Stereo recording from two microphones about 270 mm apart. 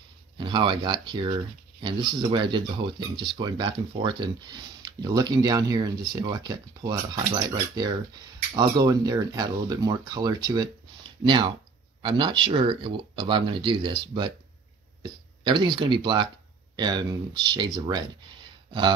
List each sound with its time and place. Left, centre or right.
0.4 s speech: centre